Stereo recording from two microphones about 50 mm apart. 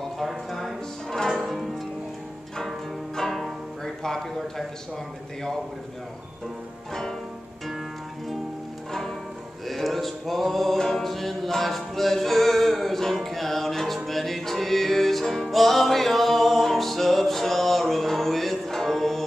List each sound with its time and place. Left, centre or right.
0.2 s music: centre
3.2 s music: centre
3.8 s a sound: centre
6.9 s music: centre
9.7 s music: centre